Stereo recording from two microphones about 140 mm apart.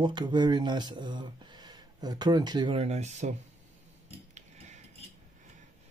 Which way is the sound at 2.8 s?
55° right (ahead or behind).